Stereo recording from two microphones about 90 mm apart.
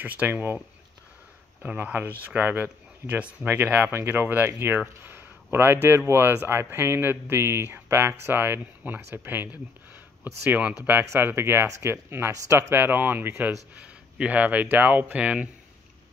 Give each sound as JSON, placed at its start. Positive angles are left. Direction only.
{"t": 0.0, "sound": "speech", "side_deg": -20}
{"t": 1.6, "sound": "speech", "side_deg": -15}
{"t": 13.7, "sound": "speech", "side_deg": -15}